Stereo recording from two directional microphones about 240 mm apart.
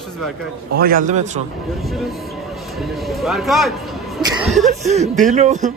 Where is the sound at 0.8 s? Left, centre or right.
Right.